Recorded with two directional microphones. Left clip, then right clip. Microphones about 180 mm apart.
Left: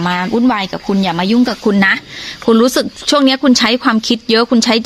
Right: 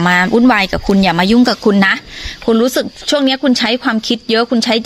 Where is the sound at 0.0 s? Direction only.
40° right (ahead or behind).